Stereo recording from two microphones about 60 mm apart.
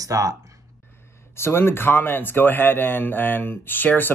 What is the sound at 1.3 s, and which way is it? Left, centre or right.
Speech, left.